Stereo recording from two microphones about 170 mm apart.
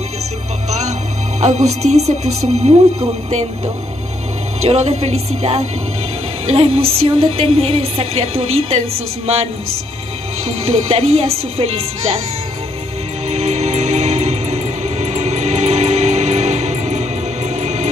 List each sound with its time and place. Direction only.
0.7 s music: 40° right (ahead or behind)
1.4 s a woman's voice: 40° right (ahead or behind)
2.6 s speech: 30° right (ahead or behind)
3.3 s a woman's voice: 40° right (ahead or behind)
13.3 s music: 40° right (ahead or behind)